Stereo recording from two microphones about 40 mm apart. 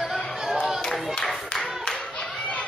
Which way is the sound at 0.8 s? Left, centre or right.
Centre.